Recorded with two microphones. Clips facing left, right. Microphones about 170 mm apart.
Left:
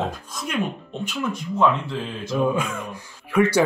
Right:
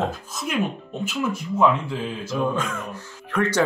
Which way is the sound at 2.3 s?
10° left (ahead or behind).